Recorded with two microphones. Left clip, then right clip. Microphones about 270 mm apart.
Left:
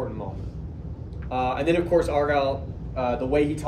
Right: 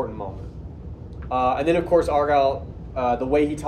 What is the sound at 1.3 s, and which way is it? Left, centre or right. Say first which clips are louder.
A man's voice: right 3 dB; centre.